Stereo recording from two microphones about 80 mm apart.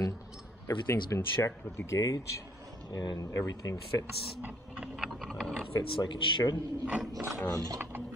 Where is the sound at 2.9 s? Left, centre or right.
Left.